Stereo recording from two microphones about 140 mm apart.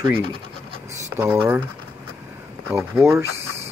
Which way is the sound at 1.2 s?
10° right (ahead or behind).